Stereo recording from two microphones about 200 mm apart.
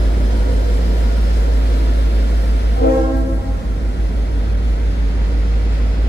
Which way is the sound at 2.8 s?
55° left (ahead or behind).